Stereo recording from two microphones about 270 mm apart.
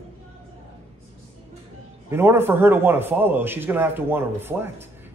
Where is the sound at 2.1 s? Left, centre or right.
Centre.